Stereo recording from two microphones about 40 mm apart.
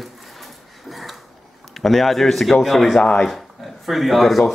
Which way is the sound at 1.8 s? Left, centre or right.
Centre.